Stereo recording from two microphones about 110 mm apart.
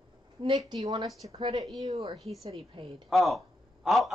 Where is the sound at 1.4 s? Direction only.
35° right (ahead or behind).